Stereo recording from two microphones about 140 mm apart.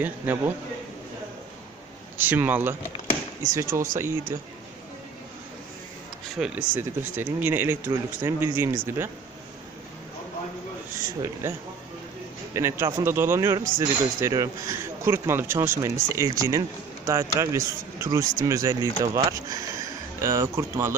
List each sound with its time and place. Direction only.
0.0 s speech: 15° right (ahead or behind)
2.1 s speech: 15° right (ahead or behind)
6.4 s speech: 10° right (ahead or behind)
11.1 s speech: 20° right (ahead or behind)
12.5 s speech: 20° right (ahead or behind)